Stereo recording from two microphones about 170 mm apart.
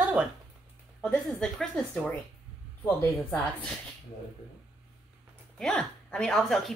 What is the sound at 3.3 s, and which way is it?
Speech, 5° left (ahead or behind).